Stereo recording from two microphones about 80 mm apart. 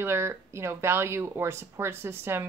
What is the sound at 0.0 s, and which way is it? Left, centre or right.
Speech, right.